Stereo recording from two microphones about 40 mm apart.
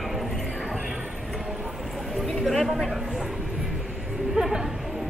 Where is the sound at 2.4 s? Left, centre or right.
Centre.